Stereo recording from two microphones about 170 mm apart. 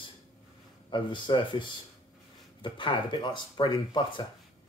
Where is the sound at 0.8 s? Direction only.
30° left (ahead or behind).